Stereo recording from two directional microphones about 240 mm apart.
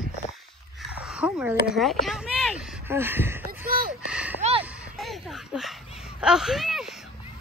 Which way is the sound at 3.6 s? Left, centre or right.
Right.